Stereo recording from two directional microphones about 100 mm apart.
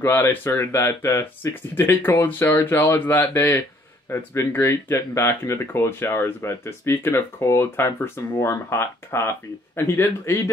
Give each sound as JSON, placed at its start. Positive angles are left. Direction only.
{"t": 0.0, "sound": "speech", "side_deg": 20}